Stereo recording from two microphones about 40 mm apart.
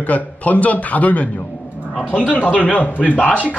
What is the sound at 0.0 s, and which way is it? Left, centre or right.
Speech, left.